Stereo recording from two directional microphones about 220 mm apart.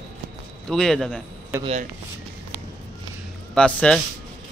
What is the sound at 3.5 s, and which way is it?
Speech, 5° left (ahead or behind).